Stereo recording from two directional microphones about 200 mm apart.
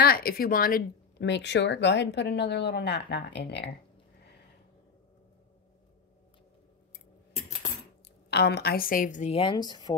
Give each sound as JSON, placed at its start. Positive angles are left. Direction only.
{"t": 0.0, "sound": "a woman's voice", "side_deg": 50}
{"t": 8.3, "sound": "a woman's voice", "side_deg": 55}